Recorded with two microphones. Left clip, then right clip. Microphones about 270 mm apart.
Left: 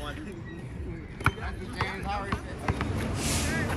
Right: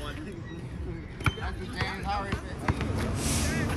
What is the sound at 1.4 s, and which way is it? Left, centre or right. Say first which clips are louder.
Clip-clop: even; centre.